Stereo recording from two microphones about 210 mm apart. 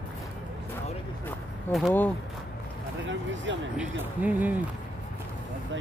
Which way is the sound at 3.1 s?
60° right (ahead or behind).